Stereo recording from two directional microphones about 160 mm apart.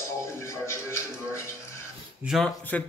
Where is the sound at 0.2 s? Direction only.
15° left (ahead or behind).